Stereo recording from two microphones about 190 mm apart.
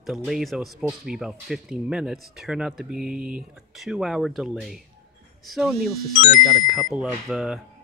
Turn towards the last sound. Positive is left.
turn(degrees=-5)  # may be behind; listen again after turning